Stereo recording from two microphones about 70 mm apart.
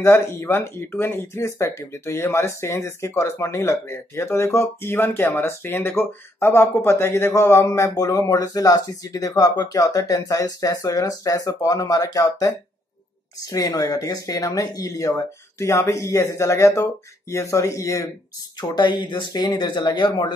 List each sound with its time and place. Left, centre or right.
0.0 s speech: left
7.9 s speech: left
18.8 s speech: left